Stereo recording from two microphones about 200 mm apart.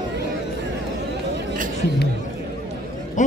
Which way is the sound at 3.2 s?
40° left (ahead or behind).